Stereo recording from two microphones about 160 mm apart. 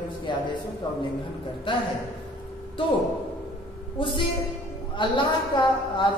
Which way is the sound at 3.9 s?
30° left (ahead or behind).